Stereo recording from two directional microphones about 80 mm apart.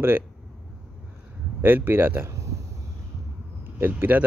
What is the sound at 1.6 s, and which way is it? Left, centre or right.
Speech, right.